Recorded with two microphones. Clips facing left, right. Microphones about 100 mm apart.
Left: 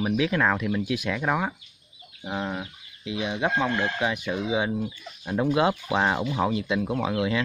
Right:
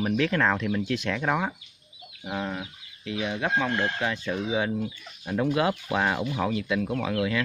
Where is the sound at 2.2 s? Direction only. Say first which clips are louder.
Left 1 dB; 20° left (ahead or behind).